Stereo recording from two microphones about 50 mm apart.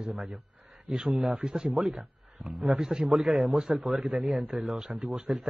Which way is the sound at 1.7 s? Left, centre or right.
Centre.